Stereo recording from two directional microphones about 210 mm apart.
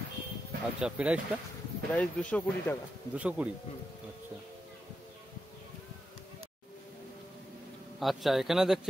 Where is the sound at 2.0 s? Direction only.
5° left (ahead or behind).